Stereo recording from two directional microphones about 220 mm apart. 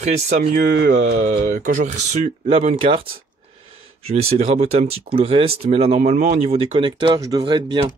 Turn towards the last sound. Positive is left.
turn(degrees=-20)  # may be behind; listen again after turning